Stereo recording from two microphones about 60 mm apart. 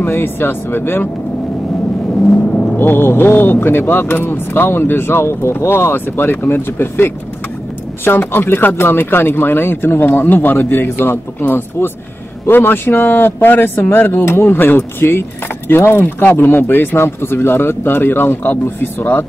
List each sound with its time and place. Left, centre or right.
0.0 s speech: left
2.2 s vehicle: left
2.8 s speech: left